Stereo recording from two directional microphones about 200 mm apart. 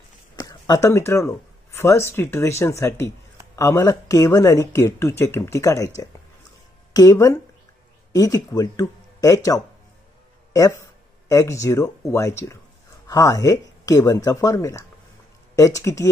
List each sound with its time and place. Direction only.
0.4 s speech: 20° left (ahead or behind)
6.9 s speech: 20° left (ahead or behind)